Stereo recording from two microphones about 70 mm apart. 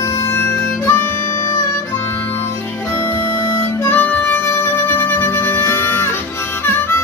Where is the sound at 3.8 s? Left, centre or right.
Left.